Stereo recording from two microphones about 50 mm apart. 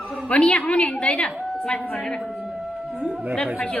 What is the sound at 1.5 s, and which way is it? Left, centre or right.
Speech, left.